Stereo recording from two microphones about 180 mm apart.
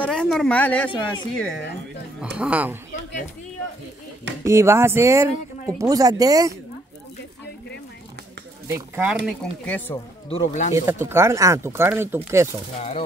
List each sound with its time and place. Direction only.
0.0 s a woman's voice: 5° left (ahead or behind)
2.3 s speech: 5° right (ahead or behind)
4.5 s speech: 15° right (ahead or behind)
8.6 s speech: 10° right (ahead or behind)
9.7 s a woman's voice: 10° left (ahead or behind)
10.3 s speech: 40° left (ahead or behind)
10.7 s speech: 15° right (ahead or behind)